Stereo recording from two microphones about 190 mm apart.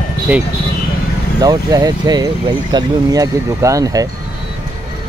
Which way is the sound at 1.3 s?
20° right (ahead or behind).